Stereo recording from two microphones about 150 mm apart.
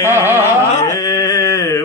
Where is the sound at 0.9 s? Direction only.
25° left (ahead or behind).